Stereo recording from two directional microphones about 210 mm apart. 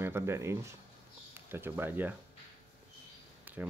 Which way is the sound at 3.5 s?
10° right (ahead or behind).